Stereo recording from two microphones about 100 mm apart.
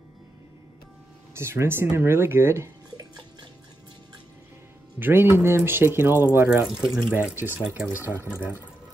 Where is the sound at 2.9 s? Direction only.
45° right (ahead or behind).